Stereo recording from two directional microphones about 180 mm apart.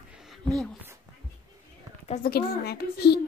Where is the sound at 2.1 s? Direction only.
55° left (ahead or behind).